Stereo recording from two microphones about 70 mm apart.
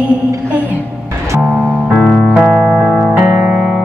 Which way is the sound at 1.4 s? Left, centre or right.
Right.